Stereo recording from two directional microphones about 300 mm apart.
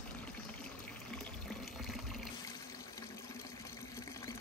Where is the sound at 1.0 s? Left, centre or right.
Centre.